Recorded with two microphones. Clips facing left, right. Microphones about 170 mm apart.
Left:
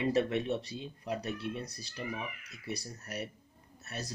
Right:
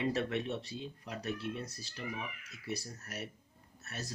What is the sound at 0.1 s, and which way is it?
Speech, 15° left (ahead or behind).